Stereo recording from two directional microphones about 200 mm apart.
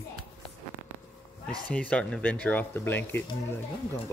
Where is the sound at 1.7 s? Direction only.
5° left (ahead or behind).